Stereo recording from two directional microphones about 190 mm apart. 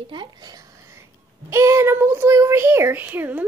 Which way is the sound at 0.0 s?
25° right (ahead or behind).